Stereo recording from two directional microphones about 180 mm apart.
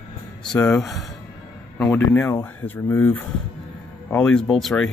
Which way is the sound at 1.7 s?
10° left (ahead or behind).